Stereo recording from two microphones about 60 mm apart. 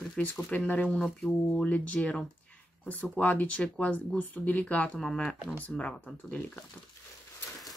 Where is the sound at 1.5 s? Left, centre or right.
Left.